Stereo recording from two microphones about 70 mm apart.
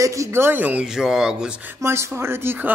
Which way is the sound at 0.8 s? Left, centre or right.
Centre.